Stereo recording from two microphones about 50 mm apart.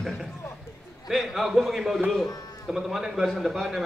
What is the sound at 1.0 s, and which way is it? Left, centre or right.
A man's voice, centre.